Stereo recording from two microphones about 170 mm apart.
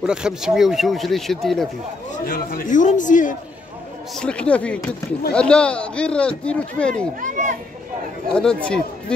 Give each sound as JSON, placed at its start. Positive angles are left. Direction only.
{"t": 0.0, "sound": "speech", "side_deg": -5}
{"t": 2.1, "sound": "a man's voice", "side_deg": 60}
{"t": 4.1, "sound": "speech", "side_deg": 5}
{"t": 7.2, "sound": "a child's voice", "side_deg": -45}
{"t": 8.4, "sound": "speech", "side_deg": 5}